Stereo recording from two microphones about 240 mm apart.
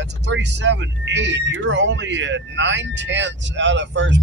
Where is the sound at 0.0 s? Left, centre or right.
Right.